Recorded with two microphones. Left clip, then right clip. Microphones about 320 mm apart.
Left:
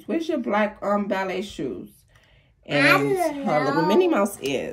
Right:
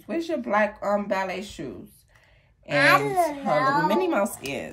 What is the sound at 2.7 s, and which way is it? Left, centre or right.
Speech, right.